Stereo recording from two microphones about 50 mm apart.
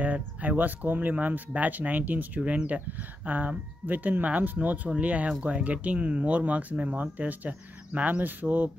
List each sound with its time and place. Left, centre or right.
0.0 s speech: right